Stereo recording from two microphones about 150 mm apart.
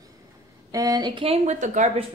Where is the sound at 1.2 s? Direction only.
45° right (ahead or behind).